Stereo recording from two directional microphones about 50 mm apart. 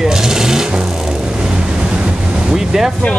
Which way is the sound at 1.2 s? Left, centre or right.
Centre.